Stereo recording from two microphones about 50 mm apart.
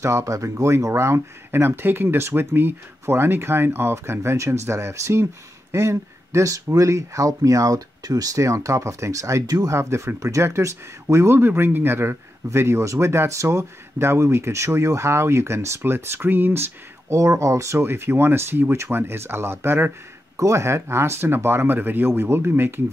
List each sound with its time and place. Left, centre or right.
0.0 s speech: right
1.5 s speech: right
11.3 s speech: right
15.8 s speech: right
17.1 s speech: right
20.3 s speech: right